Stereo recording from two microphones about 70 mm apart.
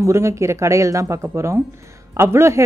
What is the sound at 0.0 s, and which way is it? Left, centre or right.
A woman's voice, right.